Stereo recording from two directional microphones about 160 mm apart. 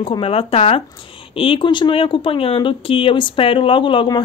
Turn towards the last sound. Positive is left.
turn(degrees=30)  # may be behind; listen again after turning